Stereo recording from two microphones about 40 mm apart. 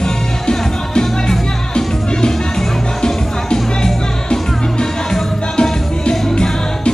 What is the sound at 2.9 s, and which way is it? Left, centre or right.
Music, centre.